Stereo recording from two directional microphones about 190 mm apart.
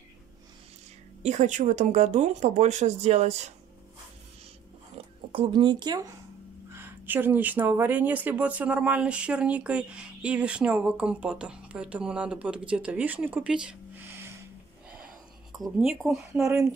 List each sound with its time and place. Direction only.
1.2 s speech: 40° right (ahead or behind)
4.9 s speech: 30° right (ahead or behind); by 14.3 s 10° right (ahead or behind)
15.6 s speech: centre (ahead or behind)
16.4 s speech: 15° right (ahead or behind)